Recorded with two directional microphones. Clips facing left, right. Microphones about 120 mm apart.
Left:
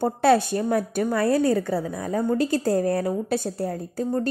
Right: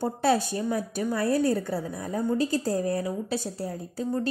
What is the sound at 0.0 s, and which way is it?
A woman's voice, 65° left (ahead or behind).